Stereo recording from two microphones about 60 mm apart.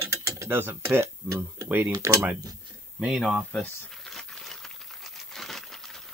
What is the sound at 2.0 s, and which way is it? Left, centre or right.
Speech, right.